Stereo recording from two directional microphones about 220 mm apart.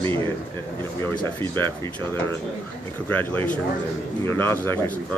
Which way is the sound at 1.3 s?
10° left (ahead or behind).